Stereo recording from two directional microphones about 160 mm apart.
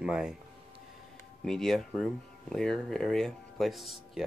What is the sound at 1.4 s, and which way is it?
Speech, centre (ahead or behind).